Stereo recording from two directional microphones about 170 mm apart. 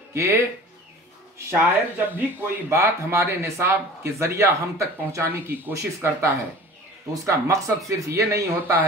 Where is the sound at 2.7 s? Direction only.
15° right (ahead or behind).